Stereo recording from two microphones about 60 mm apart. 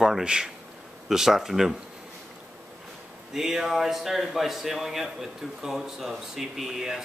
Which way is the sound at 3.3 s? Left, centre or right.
Centre.